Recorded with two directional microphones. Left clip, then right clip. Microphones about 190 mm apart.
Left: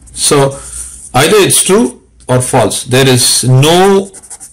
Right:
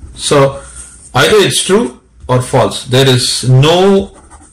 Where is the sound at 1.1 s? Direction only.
40° left (ahead or behind).